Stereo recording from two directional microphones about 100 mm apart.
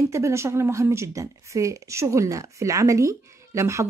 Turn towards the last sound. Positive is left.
turn(degrees=-30)  # may be behind; listen again after turning